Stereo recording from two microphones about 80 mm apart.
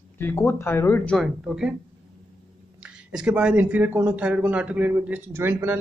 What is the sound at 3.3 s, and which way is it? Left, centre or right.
Speech, centre.